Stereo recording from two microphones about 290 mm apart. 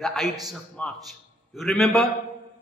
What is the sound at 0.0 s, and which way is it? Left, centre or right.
A man's voice, centre.